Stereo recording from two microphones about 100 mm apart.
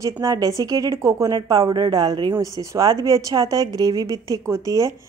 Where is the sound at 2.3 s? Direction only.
30° right (ahead or behind).